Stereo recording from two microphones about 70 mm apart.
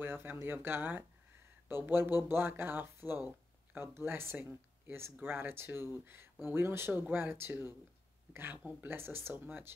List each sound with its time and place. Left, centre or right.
0.0 s speech: right